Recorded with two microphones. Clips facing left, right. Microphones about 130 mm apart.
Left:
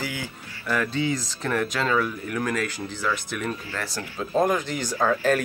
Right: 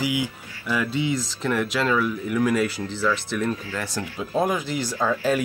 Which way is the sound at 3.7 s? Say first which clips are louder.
Right 2 dB; 20° right (ahead or behind).